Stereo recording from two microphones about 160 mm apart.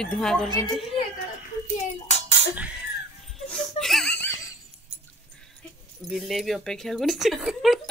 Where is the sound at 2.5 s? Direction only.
10° right (ahead or behind).